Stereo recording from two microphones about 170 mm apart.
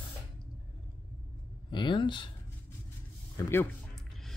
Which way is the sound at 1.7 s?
30° left (ahead or behind).